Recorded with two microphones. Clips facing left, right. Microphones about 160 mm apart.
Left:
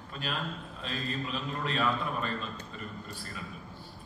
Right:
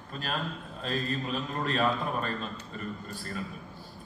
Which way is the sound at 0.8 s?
45° right (ahead or behind).